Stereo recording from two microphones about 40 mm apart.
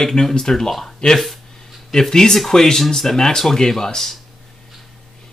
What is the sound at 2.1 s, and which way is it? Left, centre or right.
Speech, centre.